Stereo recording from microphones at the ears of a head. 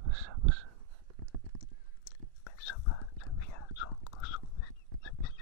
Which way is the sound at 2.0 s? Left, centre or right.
Left.